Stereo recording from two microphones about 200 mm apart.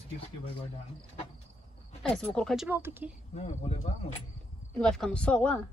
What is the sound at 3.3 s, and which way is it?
Speech, 30° left (ahead or behind).